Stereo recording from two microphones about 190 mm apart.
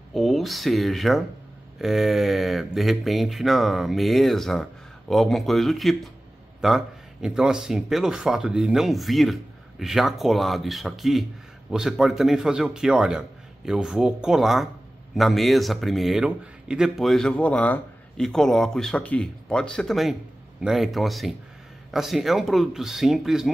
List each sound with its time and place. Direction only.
0.1 s a man's voice: centre (ahead or behind)